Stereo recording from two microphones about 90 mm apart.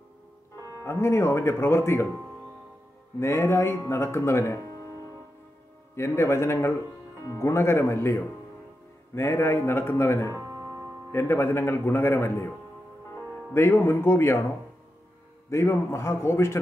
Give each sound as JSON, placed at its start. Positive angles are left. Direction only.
{"t": 0.7, "sound": "speech", "side_deg": 30}
{"t": 3.2, "sound": "speech", "side_deg": 30}
{"t": 5.9, "sound": "speech", "side_deg": 30}
{"t": 10.3, "sound": "music", "side_deg": -35}
{"t": 11.1, "sound": "speech", "side_deg": 25}
{"t": 13.5, "sound": "speech", "side_deg": 25}
{"t": 15.5, "sound": "speech", "side_deg": 30}